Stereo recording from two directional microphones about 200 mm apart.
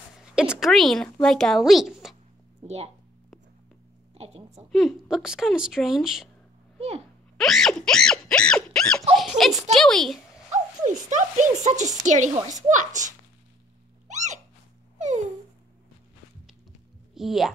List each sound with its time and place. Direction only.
0.2 s speech: 5° right (ahead or behind)
2.6 s a woman's voice: 30° right (ahead or behind)
4.1 s a sound: 30° right (ahead or behind)
4.6 s a woman's voice: centre (ahead or behind)
7.3 s a sound: centre (ahead or behind)
9.4 s a woman's voice: centre (ahead or behind)
10.5 s a woman's voice: 35° right (ahead or behind)
14.0 s sneeze: 35° right (ahead or behind)
17.1 s speech: centre (ahead or behind)